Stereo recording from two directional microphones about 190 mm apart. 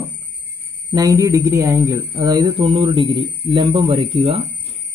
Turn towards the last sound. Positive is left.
turn(degrees=-30)  # may be behind; listen again after turning